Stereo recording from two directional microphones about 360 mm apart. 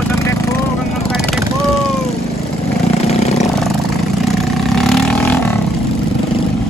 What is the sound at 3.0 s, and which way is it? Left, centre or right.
Vehicle, centre.